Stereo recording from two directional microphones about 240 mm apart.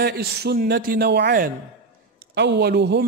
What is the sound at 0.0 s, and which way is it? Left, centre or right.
A man's voice, right.